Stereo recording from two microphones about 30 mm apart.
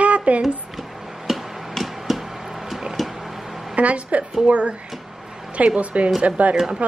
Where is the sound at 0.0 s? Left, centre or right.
Right.